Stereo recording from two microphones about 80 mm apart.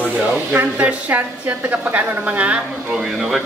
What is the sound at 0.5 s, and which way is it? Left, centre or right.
A woman's voice, centre.